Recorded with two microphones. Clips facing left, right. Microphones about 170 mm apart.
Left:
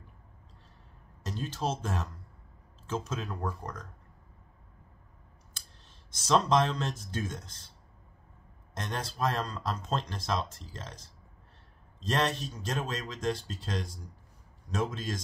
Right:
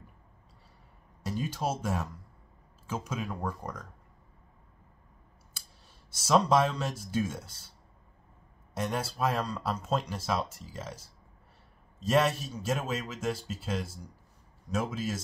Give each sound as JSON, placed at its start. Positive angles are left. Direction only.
{"t": 1.2, "sound": "speech", "side_deg": -10}
{"t": 5.5, "sound": "speech", "side_deg": -10}
{"t": 8.7, "sound": "speech", "side_deg": -10}